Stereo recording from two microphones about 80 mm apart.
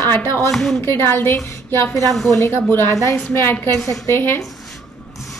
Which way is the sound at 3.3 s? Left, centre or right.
Left.